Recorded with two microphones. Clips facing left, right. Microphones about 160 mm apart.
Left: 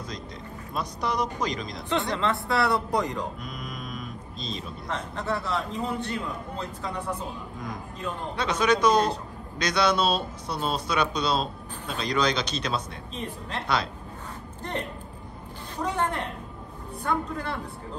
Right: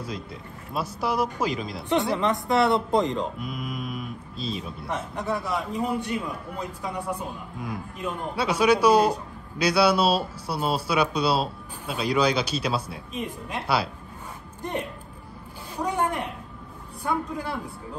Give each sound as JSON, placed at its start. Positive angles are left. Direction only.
{"t": 0.7, "sound": "speech", "side_deg": -5}
{"t": 2.1, "sound": "speech", "side_deg": -20}
{"t": 3.3, "sound": "a man's voice", "side_deg": -5}